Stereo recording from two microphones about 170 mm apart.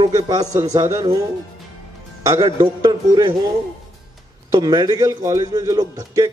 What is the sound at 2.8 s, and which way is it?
Speech, 25° right (ahead or behind).